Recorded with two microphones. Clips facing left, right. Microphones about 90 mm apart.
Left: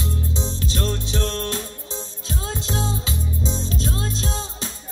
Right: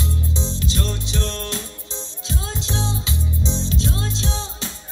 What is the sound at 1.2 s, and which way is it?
Music, 50° left (ahead or behind).